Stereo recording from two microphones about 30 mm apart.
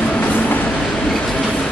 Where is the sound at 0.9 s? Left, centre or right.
Centre.